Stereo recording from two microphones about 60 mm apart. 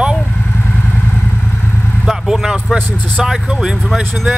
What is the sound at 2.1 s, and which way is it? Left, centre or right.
Speech, centre.